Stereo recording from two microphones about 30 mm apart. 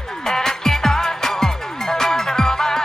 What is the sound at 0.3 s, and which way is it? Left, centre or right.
Music, centre.